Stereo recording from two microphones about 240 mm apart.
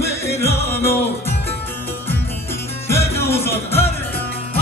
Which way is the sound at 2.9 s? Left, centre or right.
Centre.